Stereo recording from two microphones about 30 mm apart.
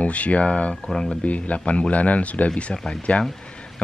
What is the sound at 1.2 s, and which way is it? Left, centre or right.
Speech, left.